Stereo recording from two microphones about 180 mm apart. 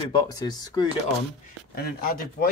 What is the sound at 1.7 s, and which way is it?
Speech, 60° left (ahead or behind).